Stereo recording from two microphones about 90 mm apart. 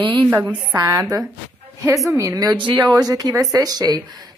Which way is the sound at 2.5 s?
60° right (ahead or behind).